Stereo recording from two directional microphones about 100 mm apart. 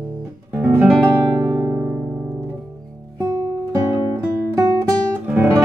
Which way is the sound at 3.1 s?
45° right (ahead or behind).